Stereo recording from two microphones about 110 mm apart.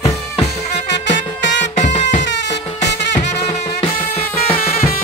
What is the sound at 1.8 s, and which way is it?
Music, 90° left.